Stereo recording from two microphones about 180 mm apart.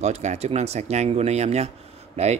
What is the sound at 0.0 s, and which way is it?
Speech, 40° right (ahead or behind).